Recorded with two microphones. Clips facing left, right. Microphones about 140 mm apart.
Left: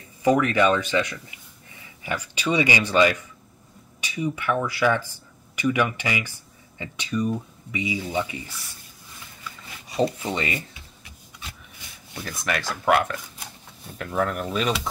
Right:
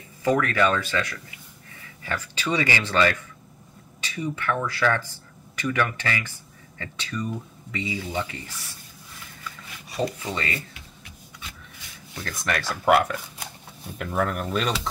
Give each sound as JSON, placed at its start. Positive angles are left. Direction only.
{"t": 0.2, "sound": "speech", "side_deg": 15}
{"t": 9.9, "sound": "speech", "side_deg": 25}
{"t": 12.2, "sound": "speech", "side_deg": 5}